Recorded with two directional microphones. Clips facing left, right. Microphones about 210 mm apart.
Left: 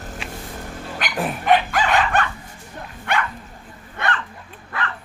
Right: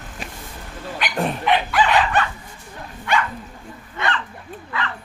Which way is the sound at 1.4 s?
45° left (ahead or behind).